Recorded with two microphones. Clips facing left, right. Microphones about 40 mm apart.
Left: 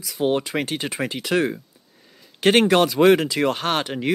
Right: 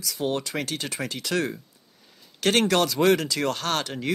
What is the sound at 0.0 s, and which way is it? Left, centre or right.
Speech, left.